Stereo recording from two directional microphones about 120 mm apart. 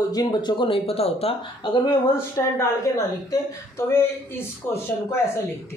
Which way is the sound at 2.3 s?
25° left (ahead or behind).